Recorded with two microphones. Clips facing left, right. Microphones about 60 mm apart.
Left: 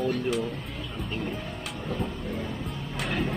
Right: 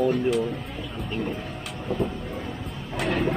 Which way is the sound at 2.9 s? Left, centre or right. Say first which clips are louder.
Right 5 dB; centre.